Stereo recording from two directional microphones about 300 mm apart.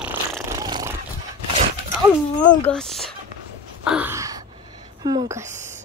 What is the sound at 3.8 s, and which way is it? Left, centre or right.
Gasp, centre.